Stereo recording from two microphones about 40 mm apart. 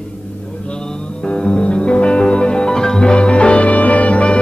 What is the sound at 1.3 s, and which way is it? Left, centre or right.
Music, left.